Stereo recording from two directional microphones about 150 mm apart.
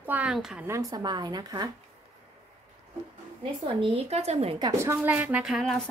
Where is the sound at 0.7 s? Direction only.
20° right (ahead or behind).